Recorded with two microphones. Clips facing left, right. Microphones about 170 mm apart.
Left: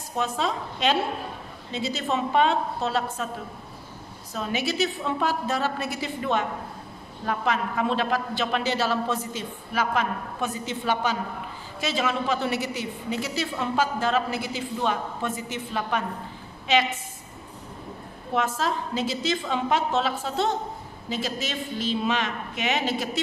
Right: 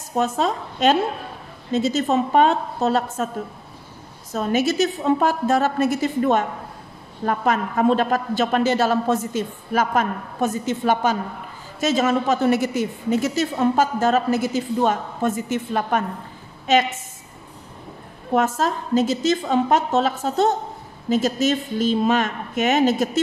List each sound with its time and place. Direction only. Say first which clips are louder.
0.1 s a woman's voice: right 6 dB; 45° right (ahead or behind)
4.3 s a woman's voice: right 8 dB; 45° right (ahead or behind)
18.3 s a woman's voice: right 6 dB; 45° right (ahead or behind)